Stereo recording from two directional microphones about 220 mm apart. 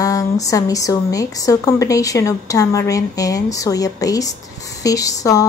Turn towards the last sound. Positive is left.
turn(degrees=15)  # may be behind; listen again after turning